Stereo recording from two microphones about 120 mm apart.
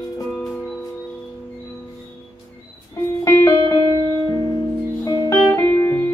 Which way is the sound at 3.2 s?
20° left (ahead or behind).